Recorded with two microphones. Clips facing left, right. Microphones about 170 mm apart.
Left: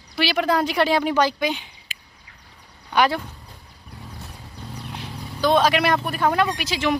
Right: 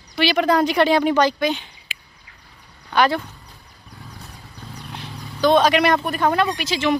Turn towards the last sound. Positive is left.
turn(degrees=10)  # may be behind; listen again after turning